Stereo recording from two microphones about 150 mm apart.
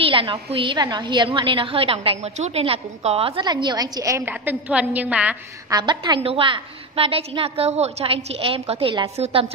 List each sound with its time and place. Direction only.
0.0 s a woman's voice: 35° right (ahead or behind)
4.2 s a woman's voice: 10° right (ahead or behind)
5.7 s a woman's voice: 30° right (ahead or behind)